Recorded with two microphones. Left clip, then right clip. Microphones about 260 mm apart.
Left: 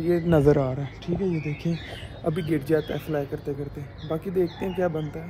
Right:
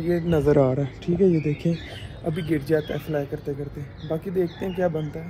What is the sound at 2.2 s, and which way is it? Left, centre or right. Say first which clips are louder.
Speech: even; left.